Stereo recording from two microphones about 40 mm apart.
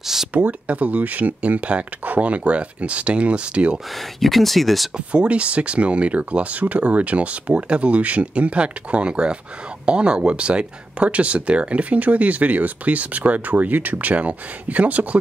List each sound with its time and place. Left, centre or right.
0.0 s a sound: centre
0.5 s speech: right
4.2 s speech: centre
5.1 s speech: right
14.1 s speech: right